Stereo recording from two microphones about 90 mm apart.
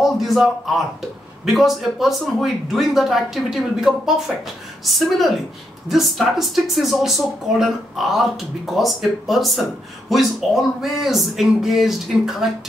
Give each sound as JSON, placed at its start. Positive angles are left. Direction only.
{"t": 0.0, "sound": "speech", "side_deg": 0}